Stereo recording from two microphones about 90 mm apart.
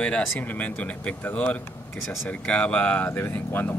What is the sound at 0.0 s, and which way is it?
Speech, 15° left (ahead or behind).